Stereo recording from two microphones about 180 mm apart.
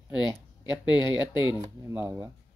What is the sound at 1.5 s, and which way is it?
Speech, 15° right (ahead or behind).